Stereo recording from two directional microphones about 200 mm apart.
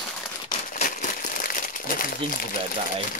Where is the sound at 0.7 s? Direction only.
40° left (ahead or behind).